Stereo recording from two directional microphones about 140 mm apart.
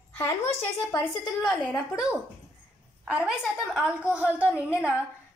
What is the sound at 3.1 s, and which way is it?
A woman's voice, 5° right (ahead or behind).